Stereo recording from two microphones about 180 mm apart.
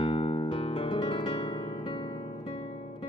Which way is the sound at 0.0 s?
30° left (ahead or behind).